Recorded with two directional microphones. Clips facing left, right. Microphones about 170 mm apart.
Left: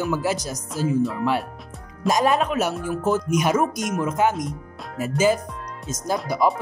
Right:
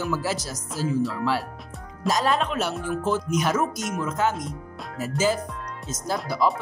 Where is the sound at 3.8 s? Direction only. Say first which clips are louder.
Left 4 dB; 15° left (ahead or behind).